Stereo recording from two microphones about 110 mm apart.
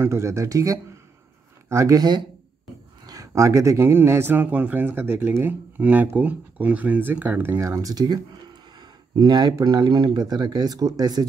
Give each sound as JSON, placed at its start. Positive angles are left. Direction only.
{"t": 0.0, "sound": "speech", "side_deg": -25}